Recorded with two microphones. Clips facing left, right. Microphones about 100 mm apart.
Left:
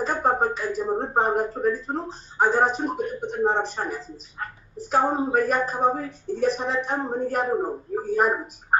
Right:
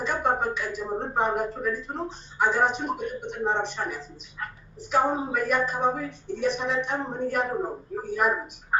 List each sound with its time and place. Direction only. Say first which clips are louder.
0.0 s a woman's voice: left 3 dB; 35° left (ahead or behind)